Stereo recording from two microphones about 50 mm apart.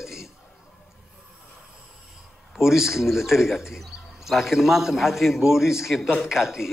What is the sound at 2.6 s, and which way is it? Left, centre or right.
A man's voice, centre.